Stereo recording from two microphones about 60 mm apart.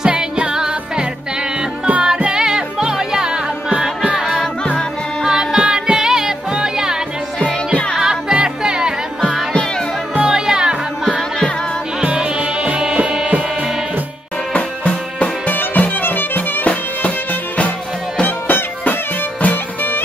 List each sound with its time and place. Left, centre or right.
0.0 s music: centre
2.0 s music: centre
7.4 s music: centre
8.0 s music: centre
9.5 s music: centre
10.1 s music: centre
12.0 s music: centre
14.5 s music: left
16.6 s music: left